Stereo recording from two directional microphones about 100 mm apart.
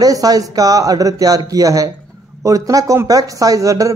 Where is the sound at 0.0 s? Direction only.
40° right (ahead or behind).